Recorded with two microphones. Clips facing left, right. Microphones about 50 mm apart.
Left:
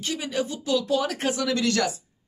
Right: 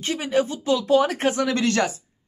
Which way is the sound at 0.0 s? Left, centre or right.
Right.